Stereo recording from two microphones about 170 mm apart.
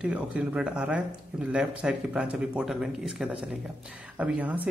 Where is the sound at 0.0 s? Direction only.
5° right (ahead or behind).